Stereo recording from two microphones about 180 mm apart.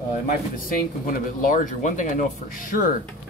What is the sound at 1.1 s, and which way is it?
Speech, 45° left (ahead or behind).